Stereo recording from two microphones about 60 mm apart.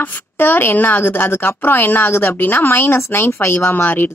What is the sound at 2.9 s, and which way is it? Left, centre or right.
Speech, left.